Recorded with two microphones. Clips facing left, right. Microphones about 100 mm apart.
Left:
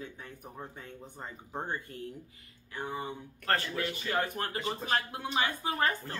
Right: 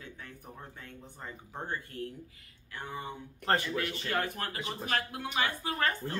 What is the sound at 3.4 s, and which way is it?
Speech, 20° right (ahead or behind).